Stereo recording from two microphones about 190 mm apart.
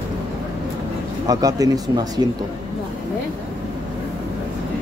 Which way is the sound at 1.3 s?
20° right (ahead or behind).